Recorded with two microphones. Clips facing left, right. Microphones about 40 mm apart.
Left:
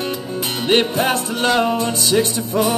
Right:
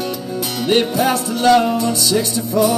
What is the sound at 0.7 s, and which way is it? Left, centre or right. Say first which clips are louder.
Music: right 1 dB; left.